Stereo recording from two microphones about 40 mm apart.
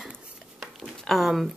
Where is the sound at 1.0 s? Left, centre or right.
Centre.